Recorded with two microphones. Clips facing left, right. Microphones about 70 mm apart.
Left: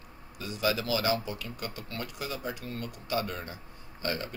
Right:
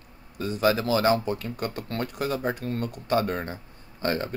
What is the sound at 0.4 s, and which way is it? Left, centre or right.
Speech, right.